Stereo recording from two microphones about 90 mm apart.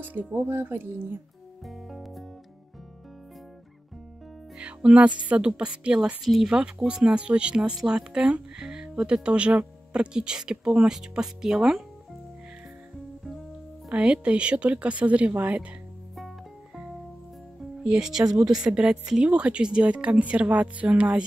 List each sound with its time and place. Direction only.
0.0 s speech: 20° right (ahead or behind)
1.6 s music: centre (ahead or behind)
4.6 s music: 15° right (ahead or behind)
5.3 s speech: 15° right (ahead or behind)
13.8 s speech: 10° right (ahead or behind)
16.2 s music: centre (ahead or behind)
17.8 s speech: 10° right (ahead or behind)